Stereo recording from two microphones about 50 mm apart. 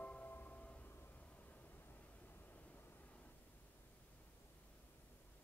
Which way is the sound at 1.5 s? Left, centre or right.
Left.